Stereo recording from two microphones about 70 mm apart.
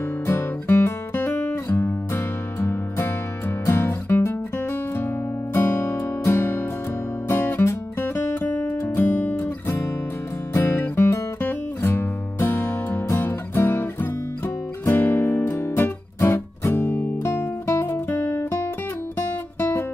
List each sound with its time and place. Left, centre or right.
0.3 s music: left
16.8 s music: centre
17.2 s music: left